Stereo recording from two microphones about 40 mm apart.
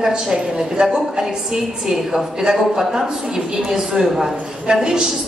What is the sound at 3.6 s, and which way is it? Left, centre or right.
A woman's voice, centre.